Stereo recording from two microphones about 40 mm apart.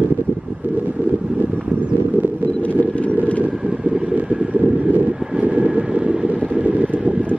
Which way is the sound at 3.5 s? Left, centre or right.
Right.